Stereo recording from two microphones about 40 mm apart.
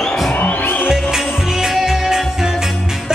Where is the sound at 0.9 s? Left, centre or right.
Centre.